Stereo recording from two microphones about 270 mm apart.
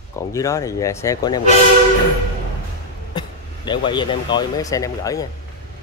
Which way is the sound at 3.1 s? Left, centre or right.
Centre.